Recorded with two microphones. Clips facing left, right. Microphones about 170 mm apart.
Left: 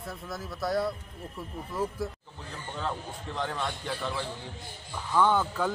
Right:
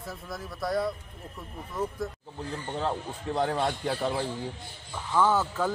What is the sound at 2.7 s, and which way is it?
A man's voice, 35° right (ahead or behind).